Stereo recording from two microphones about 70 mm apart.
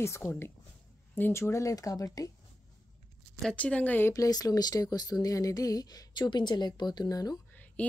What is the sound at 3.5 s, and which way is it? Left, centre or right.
Speech, centre.